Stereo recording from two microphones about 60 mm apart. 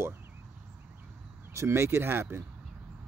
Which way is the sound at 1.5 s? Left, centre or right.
Right.